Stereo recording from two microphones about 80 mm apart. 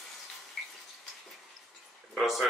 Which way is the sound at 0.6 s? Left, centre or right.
Centre.